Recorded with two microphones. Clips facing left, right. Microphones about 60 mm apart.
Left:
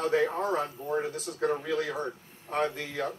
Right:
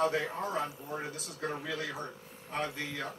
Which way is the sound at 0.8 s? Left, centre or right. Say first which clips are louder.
Left 8 dB; centre.